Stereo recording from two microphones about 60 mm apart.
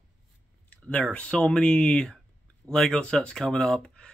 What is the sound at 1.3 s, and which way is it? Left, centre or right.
Speech, centre.